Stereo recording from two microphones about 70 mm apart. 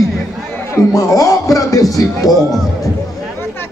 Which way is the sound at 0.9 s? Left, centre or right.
Left.